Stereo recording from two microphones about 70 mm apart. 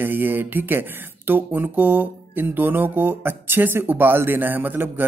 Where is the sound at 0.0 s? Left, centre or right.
Right.